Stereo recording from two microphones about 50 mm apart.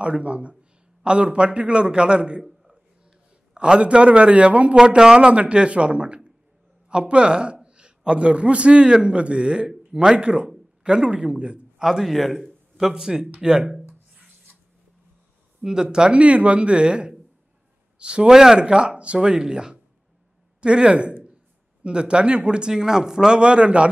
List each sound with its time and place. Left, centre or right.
0.0 s speech: right
2.4 s a sound: centre
3.5 s speech: centre
4.7 s a man's voice: centre
11.8 s a man's voice: centre
14.1 s rub: right
15.6 s a man's voice: centre